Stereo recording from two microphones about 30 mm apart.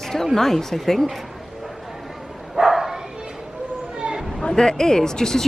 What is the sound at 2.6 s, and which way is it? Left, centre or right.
Bow-wow, centre.